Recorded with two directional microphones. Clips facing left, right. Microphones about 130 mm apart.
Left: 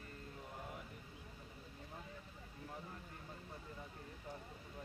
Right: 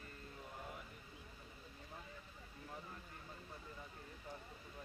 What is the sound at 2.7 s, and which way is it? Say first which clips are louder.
Vehicle: even; 25° left (ahead or behind).